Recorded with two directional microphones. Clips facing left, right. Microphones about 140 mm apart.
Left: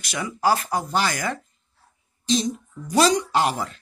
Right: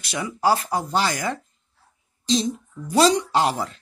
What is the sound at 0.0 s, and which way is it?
Speech, 25° right (ahead or behind).